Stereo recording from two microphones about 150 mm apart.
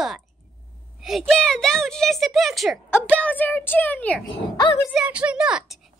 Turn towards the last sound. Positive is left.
turn(degrees=-5)  # may be behind; listen again after turning